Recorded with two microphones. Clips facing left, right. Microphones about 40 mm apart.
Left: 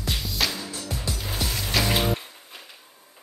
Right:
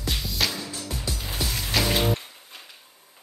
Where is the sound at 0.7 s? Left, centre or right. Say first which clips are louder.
Left 1 dB; left.